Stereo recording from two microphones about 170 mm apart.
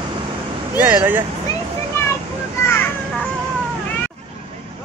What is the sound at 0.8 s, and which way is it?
Speech, 10° right (ahead or behind).